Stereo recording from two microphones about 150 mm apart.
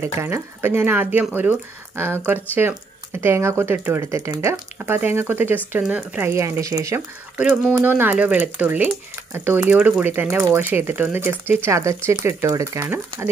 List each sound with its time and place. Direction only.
0.0 s speech: 15° right (ahead or behind)
7.3 s speech: 5° right (ahead or behind)